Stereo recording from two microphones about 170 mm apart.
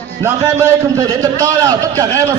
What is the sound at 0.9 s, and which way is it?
A man's voice, 20° right (ahead or behind).